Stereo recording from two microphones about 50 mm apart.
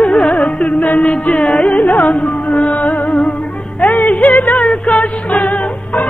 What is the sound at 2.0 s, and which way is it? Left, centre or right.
Music, left.